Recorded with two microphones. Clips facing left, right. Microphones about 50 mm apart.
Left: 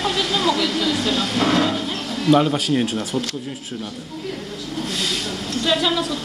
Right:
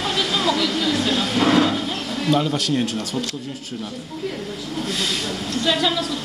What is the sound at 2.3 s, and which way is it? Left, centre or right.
Speech, centre.